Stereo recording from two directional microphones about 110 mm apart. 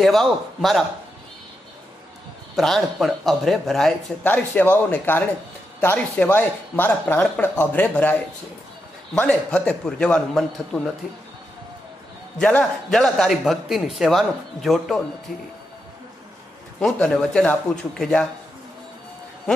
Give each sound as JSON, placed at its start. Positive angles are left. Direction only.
{"t": 0.0, "sound": "a man's voice", "side_deg": 0}
{"t": 2.5, "sound": "a man's voice", "side_deg": 0}
{"t": 4.2, "sound": "speech", "side_deg": 15}
{"t": 12.4, "sound": "a man's voice", "side_deg": 10}
{"t": 16.8, "sound": "a man's voice", "side_deg": 5}